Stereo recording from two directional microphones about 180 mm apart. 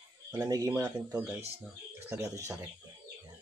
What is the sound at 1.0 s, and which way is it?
Speech, 5° right (ahead or behind).